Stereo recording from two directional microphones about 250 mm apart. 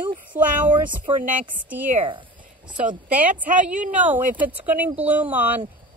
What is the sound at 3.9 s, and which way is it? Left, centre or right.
A woman's voice, centre.